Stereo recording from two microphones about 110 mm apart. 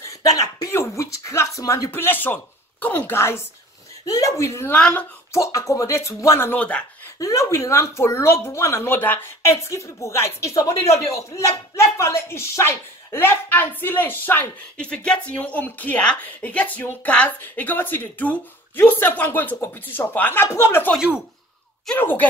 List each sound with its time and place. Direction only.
0.0 s speech: 30° left (ahead or behind)
4.7 s speech: 10° left (ahead or behind)
5.3 s speech: 30° left (ahead or behind)
21.9 s speech: 15° left (ahead or behind)